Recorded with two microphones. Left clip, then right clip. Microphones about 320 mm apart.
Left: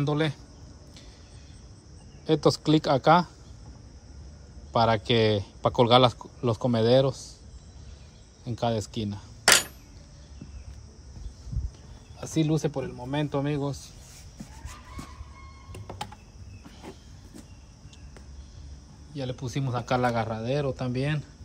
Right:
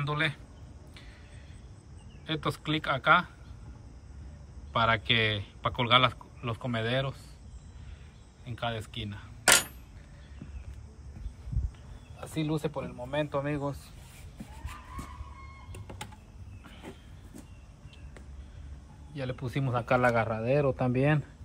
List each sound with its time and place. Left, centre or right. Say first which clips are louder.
0.0 s a man's voice: left 3 dB; centre
2.2 s a man's voice: left 10 dB; centre
4.7 s a man's voice: left 3 dB; centre
8.5 s a man's voice: left 6 dB; centre
12.4 s speech: left 5 dB; left
19.1 s speech: left 2 dB; centre